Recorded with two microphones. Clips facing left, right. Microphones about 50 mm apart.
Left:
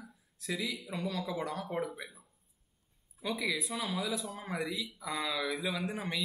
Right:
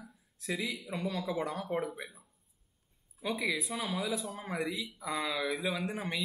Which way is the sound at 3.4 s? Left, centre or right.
Centre.